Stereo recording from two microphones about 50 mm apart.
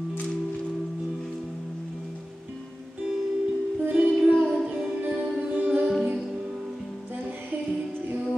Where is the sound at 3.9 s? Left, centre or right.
Right.